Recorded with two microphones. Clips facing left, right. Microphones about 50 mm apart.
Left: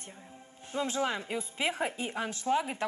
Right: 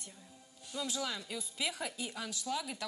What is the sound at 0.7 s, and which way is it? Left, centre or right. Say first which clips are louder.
A woman's voice: left 7 dB; left.